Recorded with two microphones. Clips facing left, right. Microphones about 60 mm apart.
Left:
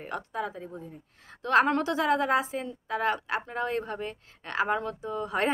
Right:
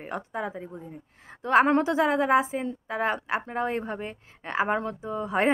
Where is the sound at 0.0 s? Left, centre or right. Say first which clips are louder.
Right 1 dB; centre.